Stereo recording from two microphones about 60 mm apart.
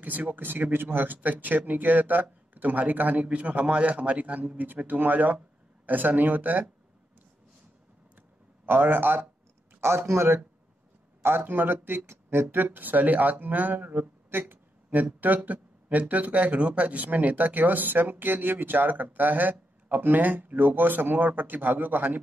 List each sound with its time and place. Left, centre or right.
0.0 s speech: right
8.6 s speech: right
9.8 s speech: right